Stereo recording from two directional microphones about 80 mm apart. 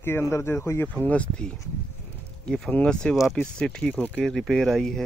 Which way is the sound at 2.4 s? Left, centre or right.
Centre.